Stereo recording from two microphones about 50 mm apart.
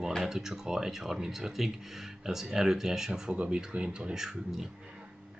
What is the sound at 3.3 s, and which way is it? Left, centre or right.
Speech, right.